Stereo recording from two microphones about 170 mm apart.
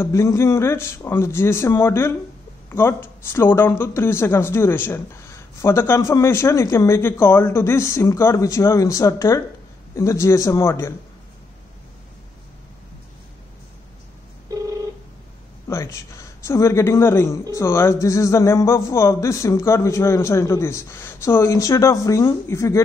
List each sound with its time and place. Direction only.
0.0 s speech: 15° left (ahead or behind)
16.4 s speech: 15° left (ahead or behind)